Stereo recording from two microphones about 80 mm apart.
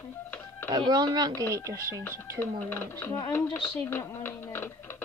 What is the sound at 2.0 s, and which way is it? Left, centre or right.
Speech, left.